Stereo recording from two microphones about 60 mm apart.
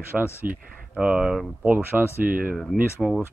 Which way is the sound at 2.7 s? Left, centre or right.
Centre.